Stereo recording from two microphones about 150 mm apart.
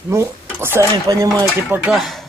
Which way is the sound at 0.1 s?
15° right (ahead or behind).